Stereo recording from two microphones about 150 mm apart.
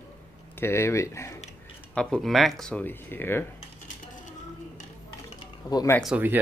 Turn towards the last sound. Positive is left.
turn(degrees=-10)  # may be behind; listen again after turning